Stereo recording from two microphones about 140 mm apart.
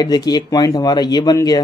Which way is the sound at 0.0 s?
30° left (ahead or behind).